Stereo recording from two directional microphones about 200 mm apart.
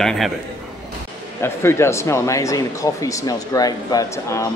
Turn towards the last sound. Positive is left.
turn(degrees=15)  # may be behind; listen again after turning